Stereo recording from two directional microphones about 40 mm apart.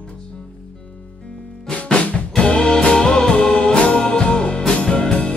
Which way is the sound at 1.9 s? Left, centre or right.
Left.